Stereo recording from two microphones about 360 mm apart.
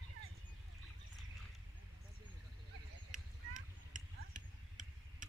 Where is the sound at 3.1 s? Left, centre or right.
Right.